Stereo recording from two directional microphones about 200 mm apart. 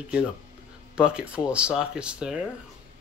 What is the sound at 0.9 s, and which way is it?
Speech, 5° right (ahead or behind).